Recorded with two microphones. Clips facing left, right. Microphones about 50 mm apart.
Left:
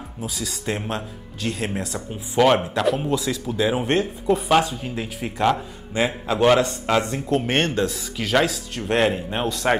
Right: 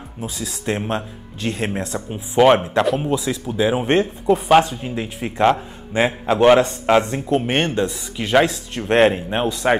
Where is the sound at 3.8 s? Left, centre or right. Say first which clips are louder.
Right 4 dB; right.